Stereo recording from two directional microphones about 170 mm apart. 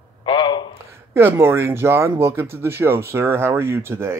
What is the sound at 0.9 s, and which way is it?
Speech, 15° right (ahead or behind).